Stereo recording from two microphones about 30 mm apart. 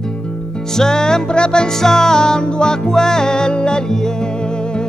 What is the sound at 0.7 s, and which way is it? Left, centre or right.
Music, centre.